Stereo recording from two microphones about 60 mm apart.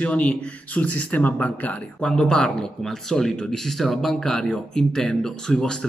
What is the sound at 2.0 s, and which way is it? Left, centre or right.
Speech, centre.